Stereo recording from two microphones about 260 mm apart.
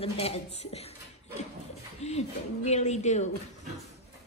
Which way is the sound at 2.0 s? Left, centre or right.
Left.